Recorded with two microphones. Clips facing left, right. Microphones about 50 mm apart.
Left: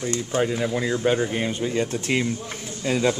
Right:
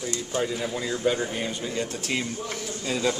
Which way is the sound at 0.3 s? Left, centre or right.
Left.